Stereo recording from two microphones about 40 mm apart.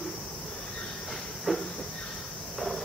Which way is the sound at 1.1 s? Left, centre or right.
Centre.